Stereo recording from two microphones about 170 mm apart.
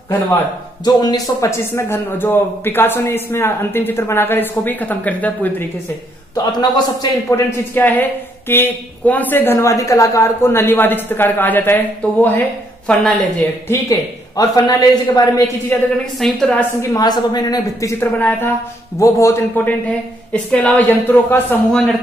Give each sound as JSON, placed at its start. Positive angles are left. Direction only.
{"t": 0.8, "sound": "a man's voice", "side_deg": 25}
{"t": 6.3, "sound": "a man's voice", "side_deg": 25}
{"t": 13.7, "sound": "speech", "side_deg": 20}
{"t": 16.2, "sound": "a woman's voice", "side_deg": 0}
{"t": 16.9, "sound": "a man's voice", "side_deg": 25}